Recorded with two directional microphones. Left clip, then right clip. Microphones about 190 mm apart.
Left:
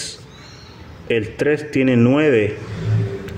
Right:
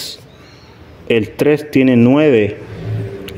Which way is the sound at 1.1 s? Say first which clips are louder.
Right 5 dB; 30° right (ahead or behind).